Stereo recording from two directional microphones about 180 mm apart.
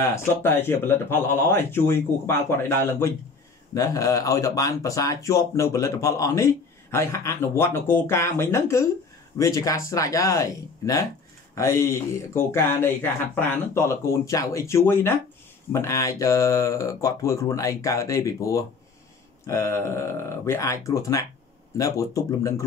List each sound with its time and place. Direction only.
0.0 s speech: 15° left (ahead or behind)